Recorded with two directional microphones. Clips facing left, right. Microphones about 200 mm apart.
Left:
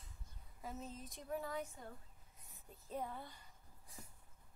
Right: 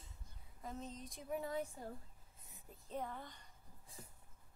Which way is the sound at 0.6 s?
5° left (ahead or behind).